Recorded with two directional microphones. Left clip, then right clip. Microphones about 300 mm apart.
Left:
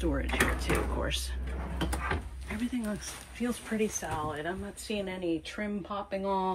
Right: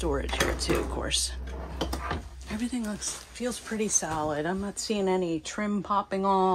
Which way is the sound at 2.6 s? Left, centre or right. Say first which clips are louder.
Right 2 dB; centre.